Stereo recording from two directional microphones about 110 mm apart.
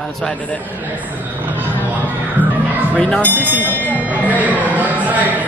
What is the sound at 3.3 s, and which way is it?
Speech, 15° left (ahead or behind).